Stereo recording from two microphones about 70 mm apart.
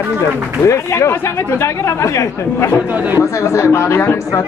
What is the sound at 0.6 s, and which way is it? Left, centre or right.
A woman's voice, left.